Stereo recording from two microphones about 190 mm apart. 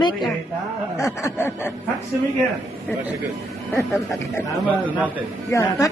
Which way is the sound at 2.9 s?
10° left (ahead or behind).